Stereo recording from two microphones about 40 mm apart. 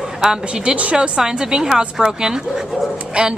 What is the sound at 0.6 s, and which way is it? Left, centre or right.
Speech, right.